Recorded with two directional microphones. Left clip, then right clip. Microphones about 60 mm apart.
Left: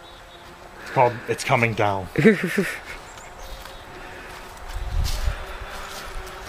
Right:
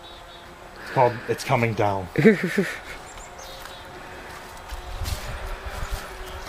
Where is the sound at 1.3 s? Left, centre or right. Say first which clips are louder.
Left 2 dB; left.